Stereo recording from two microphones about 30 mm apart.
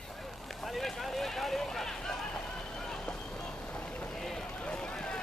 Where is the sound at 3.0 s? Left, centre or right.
Left.